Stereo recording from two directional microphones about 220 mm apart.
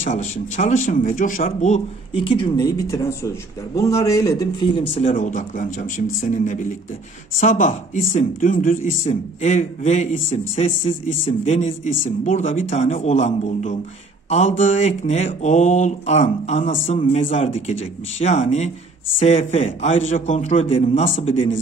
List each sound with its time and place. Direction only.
0.0 s speech: 35° left (ahead or behind); by 4.8 s 20° left (ahead or behind)
4.9 s speech: 35° left (ahead or behind)